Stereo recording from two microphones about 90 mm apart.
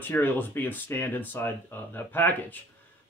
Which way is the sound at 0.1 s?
20° left (ahead or behind).